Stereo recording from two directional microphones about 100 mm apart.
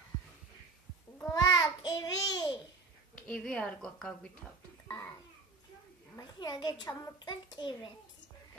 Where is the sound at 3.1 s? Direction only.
10° left (ahead or behind).